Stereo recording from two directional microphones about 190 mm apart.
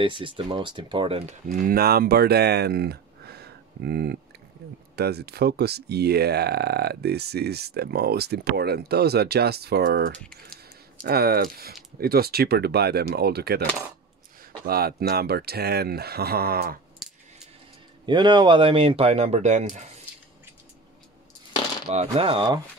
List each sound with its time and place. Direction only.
0.0 s speech: 25° right (ahead or behind)
1.5 s speech: 50° right (ahead or behind)
18.0 s speech: 25° right (ahead or behind)
21.8 s speech: 30° right (ahead or behind)